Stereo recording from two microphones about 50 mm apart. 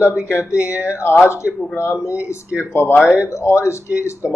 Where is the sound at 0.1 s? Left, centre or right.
Right.